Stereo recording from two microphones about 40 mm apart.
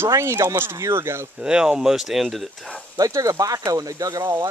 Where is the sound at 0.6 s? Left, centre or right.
Right.